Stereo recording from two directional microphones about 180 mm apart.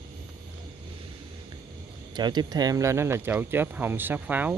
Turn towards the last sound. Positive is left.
turn(degrees=-10)  # may be behind; listen again after turning